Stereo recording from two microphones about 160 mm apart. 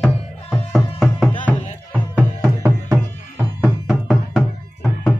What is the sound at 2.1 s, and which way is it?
Music, 15° right (ahead or behind).